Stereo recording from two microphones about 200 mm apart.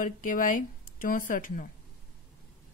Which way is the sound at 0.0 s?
40° left (ahead or behind).